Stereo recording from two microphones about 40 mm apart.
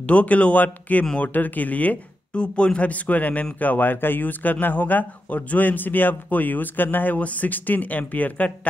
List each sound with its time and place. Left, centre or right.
0.0 s speech: left
2.3 s speech: left
2.9 s a man's voice: left
7.2 s a man's voice: left